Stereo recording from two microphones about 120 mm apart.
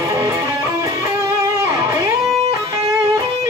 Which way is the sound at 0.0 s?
30° right (ahead or behind).